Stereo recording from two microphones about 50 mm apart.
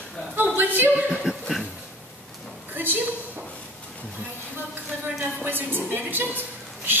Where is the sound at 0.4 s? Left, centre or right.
Right.